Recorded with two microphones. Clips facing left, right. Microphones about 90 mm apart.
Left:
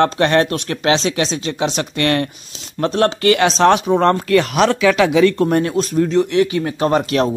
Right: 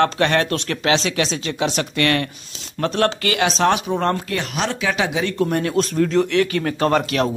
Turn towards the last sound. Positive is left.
turn(degrees=30)  # may be behind; listen again after turning